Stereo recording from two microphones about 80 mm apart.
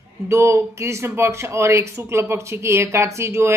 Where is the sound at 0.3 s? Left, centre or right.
Right.